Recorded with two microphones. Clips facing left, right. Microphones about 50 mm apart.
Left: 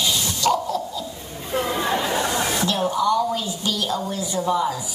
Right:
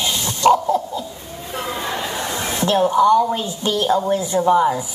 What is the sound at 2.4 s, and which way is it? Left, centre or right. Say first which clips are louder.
A woman's voice: right 4 dB; right.